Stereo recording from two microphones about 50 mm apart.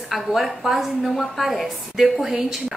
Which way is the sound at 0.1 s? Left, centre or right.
Centre.